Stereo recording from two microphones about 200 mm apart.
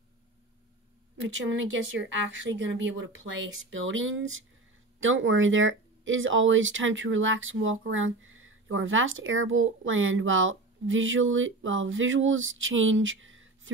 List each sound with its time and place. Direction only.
1.1 s speech: 70° right (ahead or behind)